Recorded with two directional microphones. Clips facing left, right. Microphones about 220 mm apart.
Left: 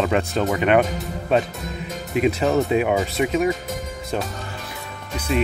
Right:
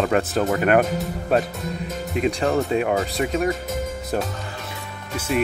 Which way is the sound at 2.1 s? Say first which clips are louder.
Left 2 dB; 5° left (ahead or behind).